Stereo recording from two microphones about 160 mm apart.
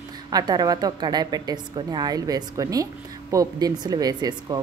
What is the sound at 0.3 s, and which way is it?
A woman's voice, 25° right (ahead or behind).